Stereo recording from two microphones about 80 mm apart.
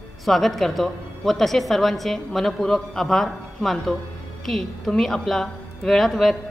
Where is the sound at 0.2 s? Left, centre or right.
Centre.